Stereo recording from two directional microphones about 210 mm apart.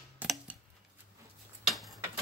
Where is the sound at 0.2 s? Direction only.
5° right (ahead or behind).